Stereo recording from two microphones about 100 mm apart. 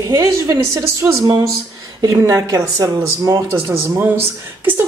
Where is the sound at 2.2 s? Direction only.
35° right (ahead or behind).